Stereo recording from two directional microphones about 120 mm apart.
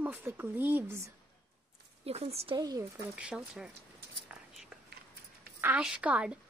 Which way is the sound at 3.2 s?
5° right (ahead or behind).